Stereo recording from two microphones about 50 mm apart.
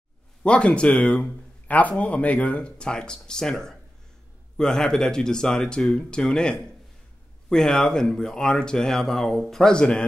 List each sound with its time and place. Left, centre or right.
0.4 s speech: left